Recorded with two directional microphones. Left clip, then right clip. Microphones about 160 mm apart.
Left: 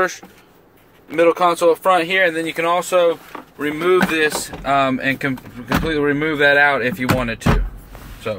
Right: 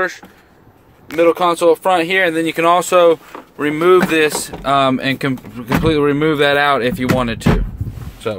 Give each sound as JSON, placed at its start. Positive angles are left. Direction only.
{"t": 1.1, "sound": "speech", "side_deg": -15}
{"t": 2.3, "sound": "speech", "side_deg": -60}